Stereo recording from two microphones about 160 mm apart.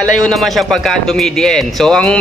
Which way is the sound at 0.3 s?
Centre (ahead or behind).